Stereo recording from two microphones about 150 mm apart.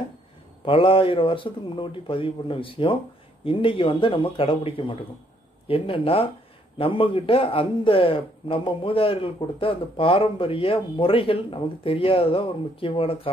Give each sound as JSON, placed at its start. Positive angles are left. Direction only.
{"t": 0.7, "sound": "a man's voice", "side_deg": 35}